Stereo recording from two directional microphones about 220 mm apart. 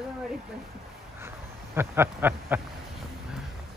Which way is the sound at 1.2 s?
10° right (ahead or behind).